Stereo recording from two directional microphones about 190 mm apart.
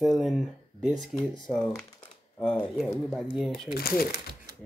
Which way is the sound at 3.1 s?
Centre (ahead or behind).